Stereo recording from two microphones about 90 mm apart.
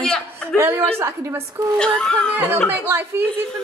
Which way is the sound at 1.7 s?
10° left (ahead or behind).